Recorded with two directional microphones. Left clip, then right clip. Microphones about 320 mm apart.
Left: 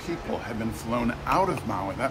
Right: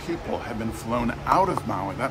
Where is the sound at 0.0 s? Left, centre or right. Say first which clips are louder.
Right 2 dB; centre.